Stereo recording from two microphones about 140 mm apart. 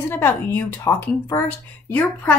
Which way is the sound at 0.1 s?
15° left (ahead or behind).